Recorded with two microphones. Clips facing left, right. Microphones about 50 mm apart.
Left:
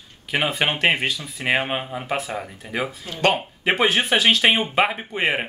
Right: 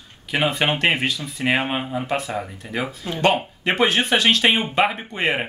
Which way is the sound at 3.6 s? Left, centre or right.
Centre.